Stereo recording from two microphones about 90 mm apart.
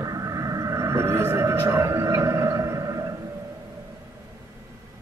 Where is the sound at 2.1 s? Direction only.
35° right (ahead or behind).